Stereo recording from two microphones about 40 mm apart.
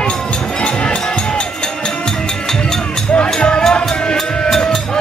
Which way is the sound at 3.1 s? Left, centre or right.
Left.